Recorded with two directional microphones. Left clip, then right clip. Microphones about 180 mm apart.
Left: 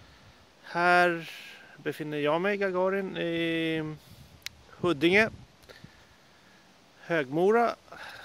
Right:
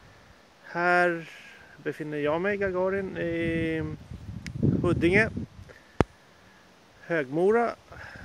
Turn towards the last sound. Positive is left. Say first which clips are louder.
# even
turn(degrees=25)  # may be behind; listen again after turning